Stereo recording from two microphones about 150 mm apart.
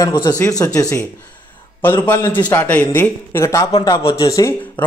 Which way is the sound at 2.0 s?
20° left (ahead or behind).